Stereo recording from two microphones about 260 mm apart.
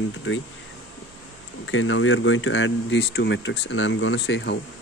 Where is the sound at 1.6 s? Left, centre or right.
Left.